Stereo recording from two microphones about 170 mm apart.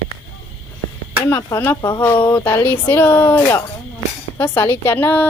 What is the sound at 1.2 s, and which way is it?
Speech, 15° left (ahead or behind).